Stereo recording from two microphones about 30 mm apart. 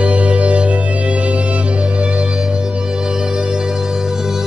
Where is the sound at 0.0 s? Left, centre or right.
Right.